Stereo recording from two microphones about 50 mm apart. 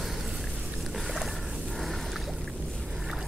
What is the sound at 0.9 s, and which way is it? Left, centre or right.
Boat, centre.